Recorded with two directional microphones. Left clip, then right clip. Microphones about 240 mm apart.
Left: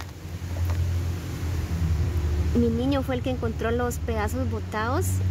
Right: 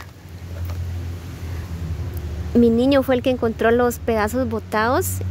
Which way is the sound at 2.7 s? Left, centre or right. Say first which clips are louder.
Right 10 dB; right.